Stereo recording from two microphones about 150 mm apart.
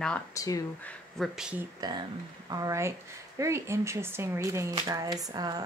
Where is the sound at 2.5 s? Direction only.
20° right (ahead or behind).